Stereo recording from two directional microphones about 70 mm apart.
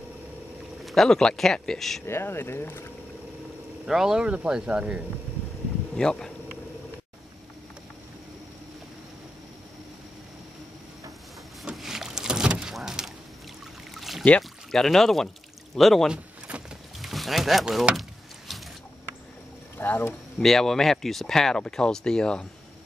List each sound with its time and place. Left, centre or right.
0.8 s speech: centre
2.0 s speech: left
3.8 s speech: centre
5.9 s speech: centre
11.7 s rowboat: centre
12.7 s a sound: centre
14.7 s speech: centre
16.1 s a sound: centre
17.0 s speech: centre
18.5 s a sound: centre
19.8 s speech: left
20.3 s speech: centre